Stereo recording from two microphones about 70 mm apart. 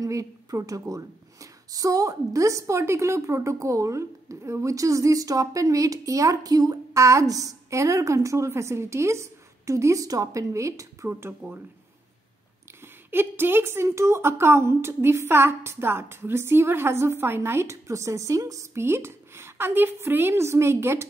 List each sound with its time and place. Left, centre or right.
0.0 s a woman's voice: right
11.1 s a woman's voice: right
12.8 s a woman's voice: right
18.8 s a woman's voice: right